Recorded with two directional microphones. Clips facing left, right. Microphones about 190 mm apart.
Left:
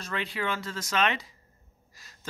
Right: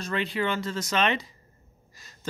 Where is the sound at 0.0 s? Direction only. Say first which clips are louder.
Right 4 dB; 5° left (ahead or behind).